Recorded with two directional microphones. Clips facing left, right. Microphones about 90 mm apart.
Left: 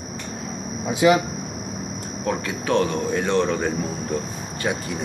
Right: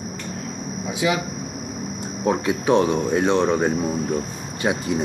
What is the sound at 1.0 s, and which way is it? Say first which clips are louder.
Speech: left 6 dB; 45° left (ahead or behind).